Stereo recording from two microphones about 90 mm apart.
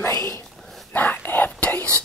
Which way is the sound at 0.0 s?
35° left (ahead or behind).